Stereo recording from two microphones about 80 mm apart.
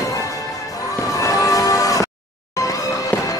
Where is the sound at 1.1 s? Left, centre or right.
Left.